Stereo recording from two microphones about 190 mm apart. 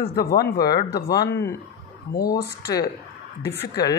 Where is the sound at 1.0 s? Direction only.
55° left (ahead or behind).